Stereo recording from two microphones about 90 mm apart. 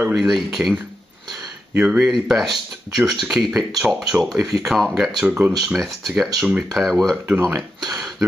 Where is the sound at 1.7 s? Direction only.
15° right (ahead or behind).